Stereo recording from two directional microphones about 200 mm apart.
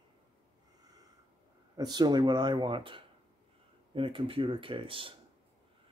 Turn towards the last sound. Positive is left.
turn(degrees=-25)  # may be behind; listen again after turning